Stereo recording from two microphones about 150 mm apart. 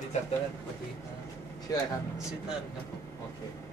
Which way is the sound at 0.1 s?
50° left (ahead or behind).